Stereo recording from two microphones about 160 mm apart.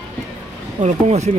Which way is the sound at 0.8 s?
45° right (ahead or behind).